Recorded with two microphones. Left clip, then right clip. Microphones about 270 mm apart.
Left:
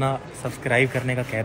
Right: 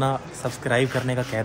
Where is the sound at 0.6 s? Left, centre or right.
Centre.